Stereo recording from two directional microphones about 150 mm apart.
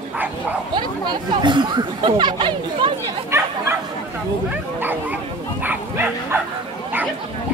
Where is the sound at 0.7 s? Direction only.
30° right (ahead or behind).